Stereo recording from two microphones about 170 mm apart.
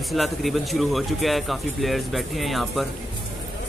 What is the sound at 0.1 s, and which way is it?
Speech, centre (ahead or behind).